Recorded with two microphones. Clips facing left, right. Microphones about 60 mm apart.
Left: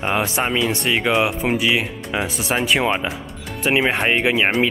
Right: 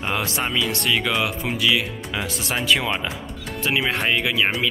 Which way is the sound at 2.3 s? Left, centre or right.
Centre.